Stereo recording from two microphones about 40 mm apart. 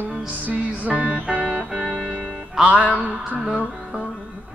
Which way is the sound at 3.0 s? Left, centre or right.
Right.